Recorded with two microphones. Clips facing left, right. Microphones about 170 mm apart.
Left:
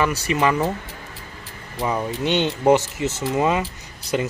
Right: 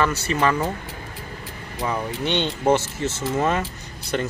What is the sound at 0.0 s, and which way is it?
Speech, 15° left (ahead or behind).